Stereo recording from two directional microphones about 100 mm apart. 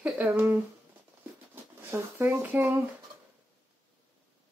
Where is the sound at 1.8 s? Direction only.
20° right (ahead or behind).